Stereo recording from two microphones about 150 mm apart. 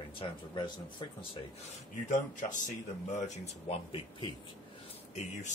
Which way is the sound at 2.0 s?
60° left (ahead or behind).